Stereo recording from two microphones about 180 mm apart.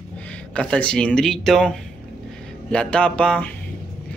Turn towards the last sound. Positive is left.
turn(degrees=5)  # may be behind; listen again after turning